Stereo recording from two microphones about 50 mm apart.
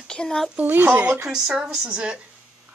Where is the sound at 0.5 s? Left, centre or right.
Right.